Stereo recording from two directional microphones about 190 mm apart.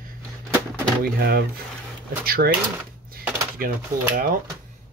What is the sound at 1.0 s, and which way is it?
Speech, 55° right (ahead or behind).